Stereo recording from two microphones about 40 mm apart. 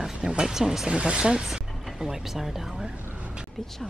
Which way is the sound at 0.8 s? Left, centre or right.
Right.